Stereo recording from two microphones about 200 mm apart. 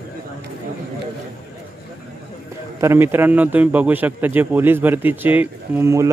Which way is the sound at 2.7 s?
10° right (ahead or behind).